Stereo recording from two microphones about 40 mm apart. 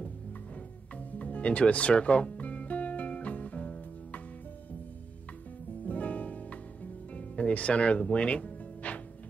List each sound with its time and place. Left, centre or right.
1.1 s music: left
5.9 s music: left